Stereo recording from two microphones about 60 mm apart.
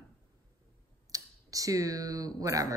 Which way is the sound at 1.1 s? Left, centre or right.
Right.